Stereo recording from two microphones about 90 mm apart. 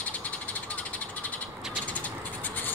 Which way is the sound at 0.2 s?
15° left (ahead or behind).